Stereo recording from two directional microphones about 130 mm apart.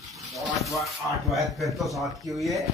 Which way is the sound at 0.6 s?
Centre (ahead or behind).